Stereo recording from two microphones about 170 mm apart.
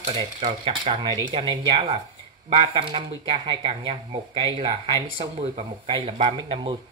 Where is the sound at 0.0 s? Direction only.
35° right (ahead or behind).